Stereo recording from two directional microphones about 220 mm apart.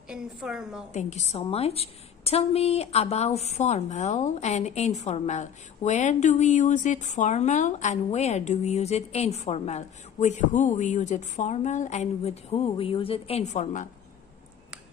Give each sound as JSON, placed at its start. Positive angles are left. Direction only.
{"t": 0.1, "sound": "a woman's voice", "side_deg": -5}
{"t": 0.9, "sound": "a woman's voice", "side_deg": 30}